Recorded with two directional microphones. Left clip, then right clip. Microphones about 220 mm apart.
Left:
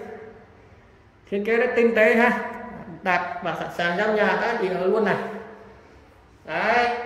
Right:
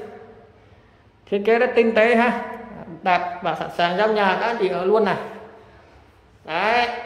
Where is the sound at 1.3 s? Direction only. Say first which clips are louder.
Right 4 dB; 10° right (ahead or behind).